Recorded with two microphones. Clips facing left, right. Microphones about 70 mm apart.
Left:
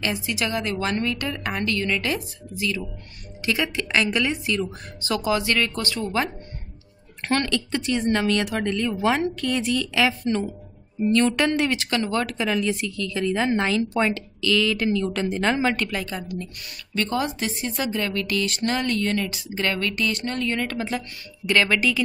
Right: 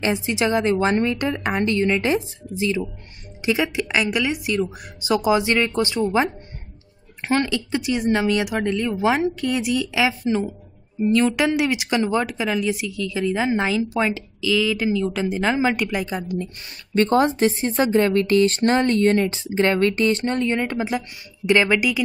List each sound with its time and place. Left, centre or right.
0.0 s a woman's voice: right
7.3 s a woman's voice: centre